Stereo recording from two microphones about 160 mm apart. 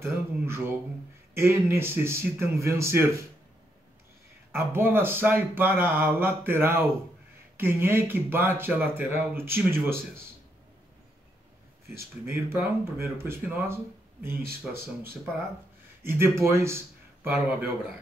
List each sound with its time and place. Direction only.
0.0 s speech: 15° right (ahead or behind)
4.5 s speech: 15° right (ahead or behind)
12.3 s speech: 15° right (ahead or behind)
16.0 s a man's voice: 15° right (ahead or behind)